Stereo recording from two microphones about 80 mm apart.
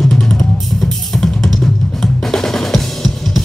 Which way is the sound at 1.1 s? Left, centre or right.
Centre.